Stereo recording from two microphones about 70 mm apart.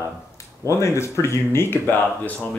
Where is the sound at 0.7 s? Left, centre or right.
Left.